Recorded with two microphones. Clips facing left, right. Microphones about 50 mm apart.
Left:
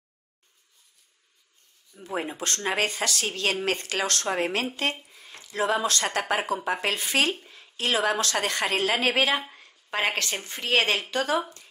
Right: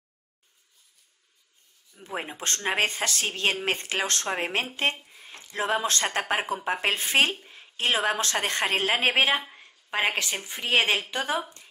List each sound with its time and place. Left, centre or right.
2.0 s speech: centre
2.3 s a woman's voice: right
9.7 s a sound: centre
10.4 s a woman's voice: centre